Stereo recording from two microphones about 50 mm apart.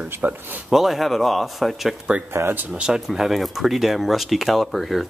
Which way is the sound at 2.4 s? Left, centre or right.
Right.